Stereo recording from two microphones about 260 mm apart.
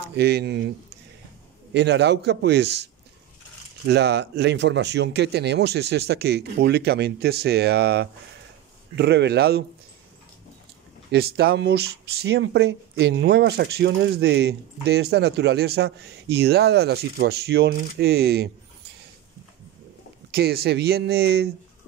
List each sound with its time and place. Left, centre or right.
0.1 s speech: right
1.7 s speech: right
11.1 s speech: right
20.3 s speech: right